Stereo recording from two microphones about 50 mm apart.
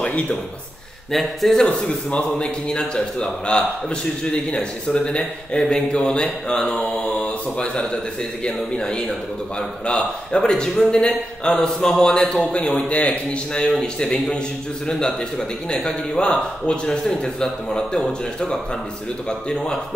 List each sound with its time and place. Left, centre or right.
0.0 s a man's voice: left
1.1 s speech: centre
1.6 s a man's voice: centre